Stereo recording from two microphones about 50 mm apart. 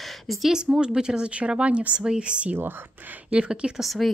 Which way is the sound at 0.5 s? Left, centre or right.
Centre.